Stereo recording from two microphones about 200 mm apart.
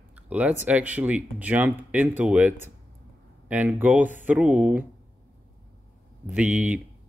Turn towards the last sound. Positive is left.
turn(degrees=-5)  # may be behind; listen again after turning